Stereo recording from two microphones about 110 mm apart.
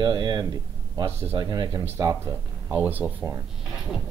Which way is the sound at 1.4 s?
40° right (ahead or behind).